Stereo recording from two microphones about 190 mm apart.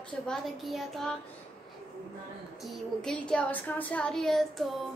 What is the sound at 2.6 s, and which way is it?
A woman's voice, centre (ahead or behind).